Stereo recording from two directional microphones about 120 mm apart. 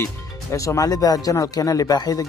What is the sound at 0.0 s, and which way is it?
Speech, 25° left (ahead or behind).